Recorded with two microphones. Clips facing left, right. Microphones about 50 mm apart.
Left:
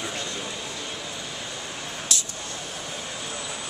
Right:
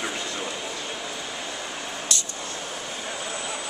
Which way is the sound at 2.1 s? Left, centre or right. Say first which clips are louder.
Left 1 dB; centre.